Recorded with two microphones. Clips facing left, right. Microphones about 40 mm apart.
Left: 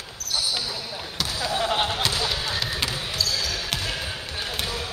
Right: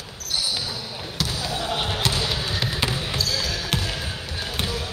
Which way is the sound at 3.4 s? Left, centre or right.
Centre.